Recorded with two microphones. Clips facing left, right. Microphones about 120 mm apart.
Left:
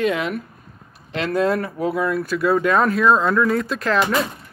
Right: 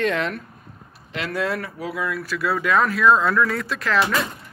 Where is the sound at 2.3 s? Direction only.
25° left (ahead or behind).